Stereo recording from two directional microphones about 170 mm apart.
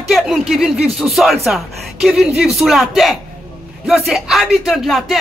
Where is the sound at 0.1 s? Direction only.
Centre (ahead or behind).